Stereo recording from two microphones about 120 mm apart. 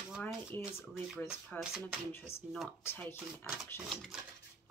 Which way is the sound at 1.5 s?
Centre (ahead or behind).